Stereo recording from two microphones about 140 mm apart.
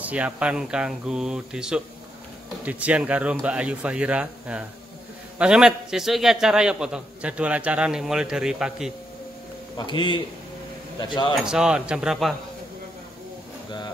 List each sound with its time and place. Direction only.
0.0 s a man's voice: 10° right (ahead or behind)
9.8 s speech: 35° left (ahead or behind)
11.4 s a man's voice: 5° right (ahead or behind)